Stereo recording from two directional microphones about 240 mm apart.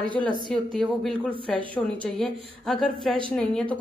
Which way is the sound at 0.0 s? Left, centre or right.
Centre.